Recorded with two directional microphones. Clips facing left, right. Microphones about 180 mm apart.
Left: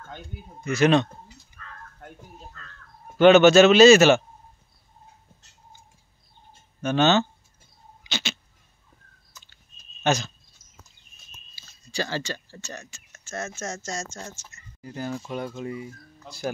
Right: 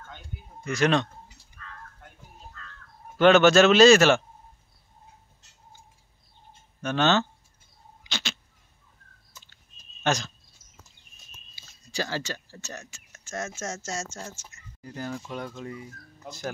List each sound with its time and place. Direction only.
0.7 s speech: 5° left (ahead or behind)
3.2 s speech: centre (ahead or behind)
6.8 s speech: 5° left (ahead or behind)
8.1 s cat: centre (ahead or behind)
10.0 s speech: 5° left (ahead or behind)
11.5 s a sound: 10° right (ahead or behind)
12.9 s speech: 10° right (ahead or behind)
15.0 s speech: 15° left (ahead or behind)